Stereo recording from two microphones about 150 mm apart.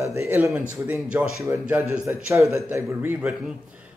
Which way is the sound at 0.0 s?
20° right (ahead or behind).